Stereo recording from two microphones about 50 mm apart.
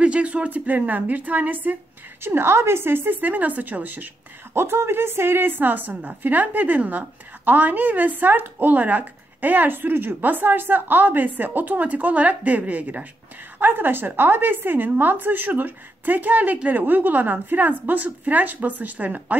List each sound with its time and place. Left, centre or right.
0.0 s a woman's voice: right
2.2 s a woman's voice: right
4.6 s a woman's voice: right
13.6 s a woman's voice: right